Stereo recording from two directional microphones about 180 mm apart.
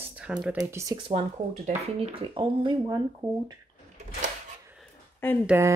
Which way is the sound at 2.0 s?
30° right (ahead or behind).